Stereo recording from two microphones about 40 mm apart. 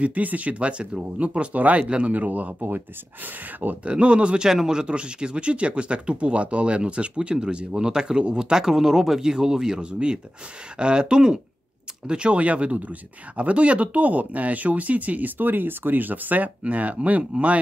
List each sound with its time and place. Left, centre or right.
0.0 s speech: right
1.8 s speech: right
2.1 s speech: right
3.8 s speech: right
4.5 s speech: centre